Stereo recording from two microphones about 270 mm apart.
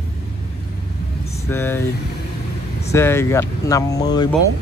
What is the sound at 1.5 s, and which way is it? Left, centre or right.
Speech, centre.